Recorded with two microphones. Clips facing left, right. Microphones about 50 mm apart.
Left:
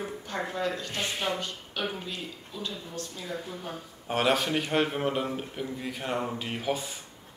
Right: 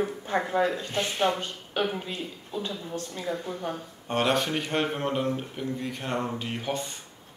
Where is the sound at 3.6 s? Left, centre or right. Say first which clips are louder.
Right 5 dB; centre.